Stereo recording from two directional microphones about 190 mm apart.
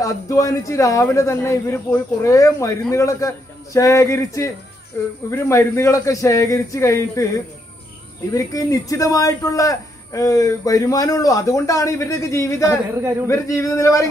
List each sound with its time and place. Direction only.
0.0 s a man's voice: 15° left (ahead or behind)
8.3 s a man's voice: 20° left (ahead or behind)